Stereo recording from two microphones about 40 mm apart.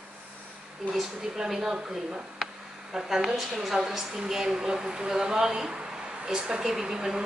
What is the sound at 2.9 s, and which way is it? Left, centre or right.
A woman's voice, centre.